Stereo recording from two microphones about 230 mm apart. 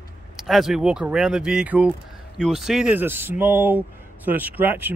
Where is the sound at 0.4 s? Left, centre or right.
Centre.